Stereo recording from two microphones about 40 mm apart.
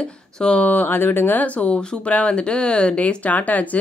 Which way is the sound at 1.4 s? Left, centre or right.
Left.